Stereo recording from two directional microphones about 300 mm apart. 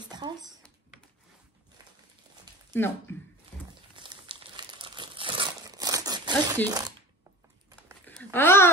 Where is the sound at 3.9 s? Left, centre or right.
Centre.